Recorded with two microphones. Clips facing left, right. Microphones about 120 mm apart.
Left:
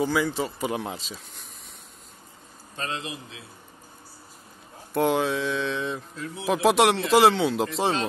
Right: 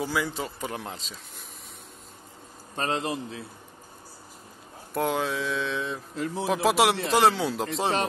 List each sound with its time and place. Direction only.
0.0 s speech: centre (ahead or behind)
2.7 s a man's voice: 45° right (ahead or behind)
4.9 s speech: centre (ahead or behind)